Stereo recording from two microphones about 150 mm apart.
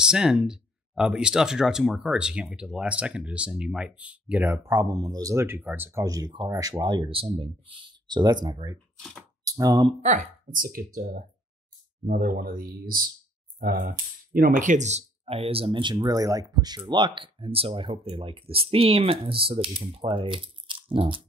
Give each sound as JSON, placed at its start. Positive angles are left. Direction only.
{"t": 0.0, "sound": "speech", "side_deg": -5}
{"t": 8.9, "sound": "speech", "side_deg": 5}
{"t": 9.4, "sound": "speech", "side_deg": -25}
{"t": 10.0, "sound": "speech", "side_deg": -60}